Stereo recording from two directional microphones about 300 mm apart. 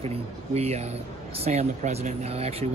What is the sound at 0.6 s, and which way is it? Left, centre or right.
Speech, right.